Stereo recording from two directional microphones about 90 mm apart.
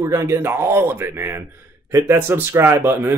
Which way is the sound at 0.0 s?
35° right (ahead or behind).